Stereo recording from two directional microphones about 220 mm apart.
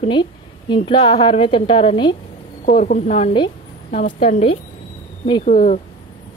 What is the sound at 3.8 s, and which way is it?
Speech, 35° left (ahead or behind).